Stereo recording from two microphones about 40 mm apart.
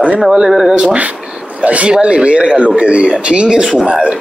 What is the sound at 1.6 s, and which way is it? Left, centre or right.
Speech, right.